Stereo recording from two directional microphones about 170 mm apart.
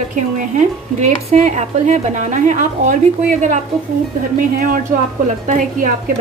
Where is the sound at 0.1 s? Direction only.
45° right (ahead or behind).